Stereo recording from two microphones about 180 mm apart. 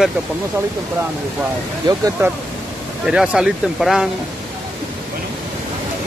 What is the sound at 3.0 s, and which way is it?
Speech, 5° right (ahead or behind).